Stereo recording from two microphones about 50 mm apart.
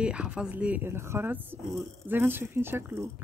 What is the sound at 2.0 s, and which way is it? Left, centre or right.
Speech, right.